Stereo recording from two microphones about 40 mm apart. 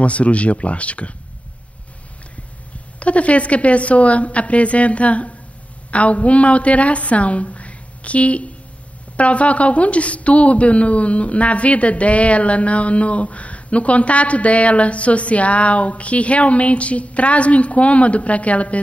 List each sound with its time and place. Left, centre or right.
0.0 s a woman's voice: left
3.0 s a woman's voice: left